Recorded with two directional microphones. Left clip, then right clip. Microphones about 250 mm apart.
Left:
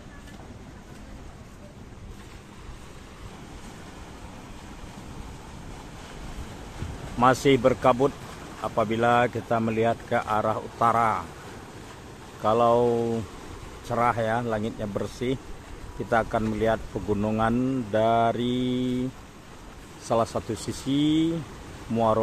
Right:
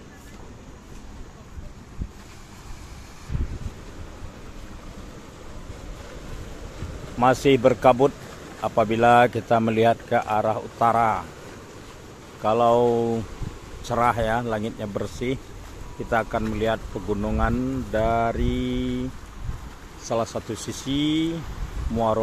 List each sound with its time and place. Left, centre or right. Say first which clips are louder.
7.2 s speech: right 2 dB; centre
12.4 s speech: right 2 dB; centre
18.5 s mantra: even; centre
20.1 s speech: left 1 dB; centre
20.5 s speech: right 1 dB; left
20.9 s speech: even; centre